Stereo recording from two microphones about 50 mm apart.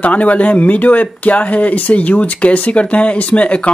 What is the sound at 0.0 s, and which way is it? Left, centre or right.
Speech, left.